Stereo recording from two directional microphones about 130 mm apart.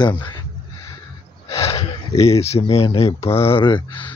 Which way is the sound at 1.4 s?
50° left (ahead or behind).